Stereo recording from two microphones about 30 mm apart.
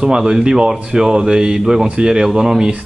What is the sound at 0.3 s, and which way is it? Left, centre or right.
Speech, right.